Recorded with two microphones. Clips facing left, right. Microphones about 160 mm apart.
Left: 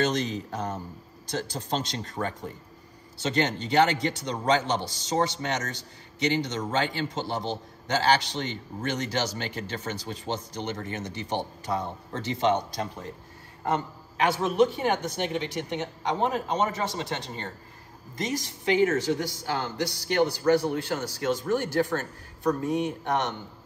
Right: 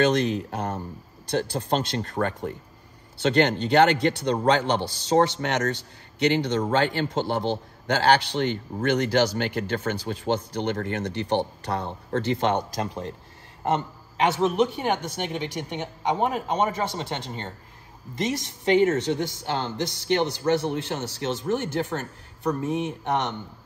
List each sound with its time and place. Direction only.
0.0 s a man's voice: 60° right (ahead or behind)
14.2 s speech: 20° right (ahead or behind)